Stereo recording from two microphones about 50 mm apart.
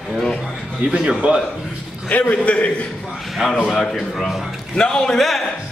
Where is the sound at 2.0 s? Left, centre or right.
Left.